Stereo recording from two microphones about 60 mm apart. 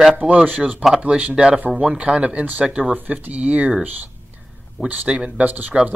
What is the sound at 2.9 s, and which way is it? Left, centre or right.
Speech, right.